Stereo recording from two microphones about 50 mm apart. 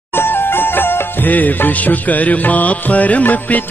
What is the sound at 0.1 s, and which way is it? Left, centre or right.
Music, left.